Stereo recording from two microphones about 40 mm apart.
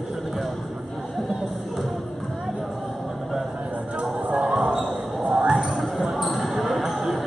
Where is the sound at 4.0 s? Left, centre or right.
Right.